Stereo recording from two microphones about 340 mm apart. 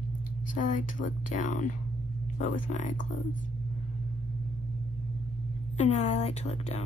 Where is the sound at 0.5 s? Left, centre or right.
Left.